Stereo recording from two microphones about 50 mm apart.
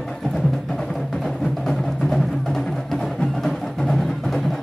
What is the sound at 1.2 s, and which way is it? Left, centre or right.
Music, centre.